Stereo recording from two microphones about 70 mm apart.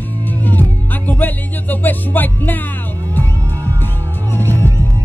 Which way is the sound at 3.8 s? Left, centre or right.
Left.